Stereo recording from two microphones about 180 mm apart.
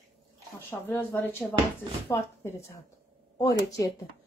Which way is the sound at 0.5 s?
10° left (ahead or behind).